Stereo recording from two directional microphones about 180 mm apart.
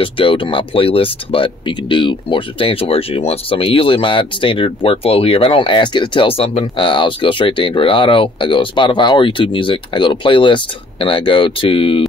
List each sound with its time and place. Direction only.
0.0 s speech: 30° left (ahead or behind)